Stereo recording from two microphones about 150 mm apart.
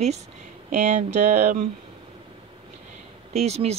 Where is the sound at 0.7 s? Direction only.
55° right (ahead or behind).